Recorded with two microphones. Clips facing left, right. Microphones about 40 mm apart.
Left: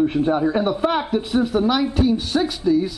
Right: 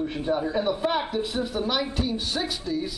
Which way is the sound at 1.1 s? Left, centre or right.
Centre.